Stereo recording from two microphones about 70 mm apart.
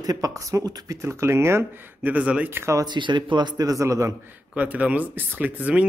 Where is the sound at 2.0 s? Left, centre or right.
Centre.